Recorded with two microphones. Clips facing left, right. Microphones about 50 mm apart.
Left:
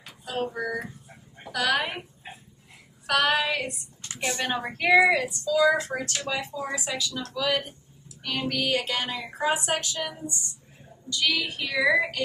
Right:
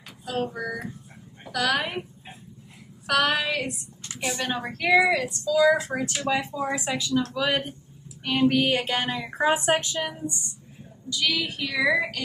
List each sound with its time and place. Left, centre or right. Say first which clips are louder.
0.2 s a woman's voice: right 1 dB; centre
3.1 s a woman's voice: even; centre
7.2 s female singing: right 3 dB; centre
11.1 s a woman's voice: even; centre